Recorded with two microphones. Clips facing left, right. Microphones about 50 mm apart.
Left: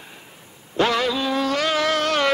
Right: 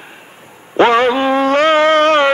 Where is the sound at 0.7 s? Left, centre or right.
Right.